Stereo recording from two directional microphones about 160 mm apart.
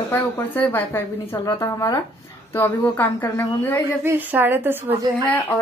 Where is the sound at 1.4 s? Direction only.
20° left (ahead or behind).